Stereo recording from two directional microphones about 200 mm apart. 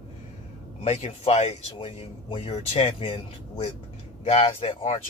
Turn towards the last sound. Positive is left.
turn(degrees=25)  # may be behind; listen again after turning